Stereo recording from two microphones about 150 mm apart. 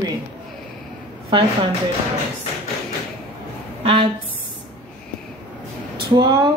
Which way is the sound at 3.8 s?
35° right (ahead or behind).